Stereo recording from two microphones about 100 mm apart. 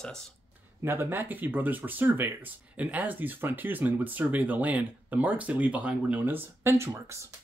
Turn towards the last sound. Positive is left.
turn(degrees=-30)  # may be behind; listen again after turning